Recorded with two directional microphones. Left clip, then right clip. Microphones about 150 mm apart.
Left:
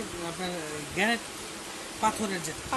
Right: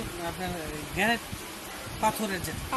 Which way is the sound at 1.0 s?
5° right (ahead or behind).